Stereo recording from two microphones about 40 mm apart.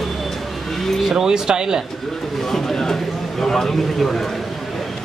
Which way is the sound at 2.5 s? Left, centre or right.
Centre.